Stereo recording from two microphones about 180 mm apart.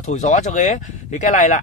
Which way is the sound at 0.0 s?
40° left (ahead or behind).